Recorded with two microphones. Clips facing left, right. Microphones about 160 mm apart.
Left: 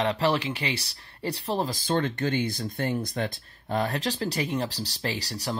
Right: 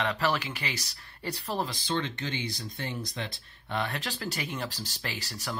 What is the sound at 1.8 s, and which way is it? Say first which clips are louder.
Speech: left 6 dB; 50° left (ahead or behind).